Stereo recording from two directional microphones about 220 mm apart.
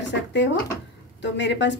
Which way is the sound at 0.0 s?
55° left (ahead or behind).